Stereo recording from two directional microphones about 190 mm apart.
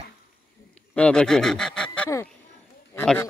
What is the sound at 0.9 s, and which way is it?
Speech, 5° left (ahead or behind).